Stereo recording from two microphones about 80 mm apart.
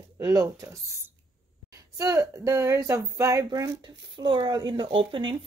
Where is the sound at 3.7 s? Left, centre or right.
Right.